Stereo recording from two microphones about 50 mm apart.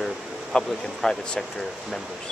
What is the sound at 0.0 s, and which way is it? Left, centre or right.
Speech, centre.